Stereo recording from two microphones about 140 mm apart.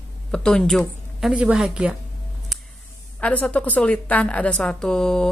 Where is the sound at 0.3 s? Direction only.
5° left (ahead or behind).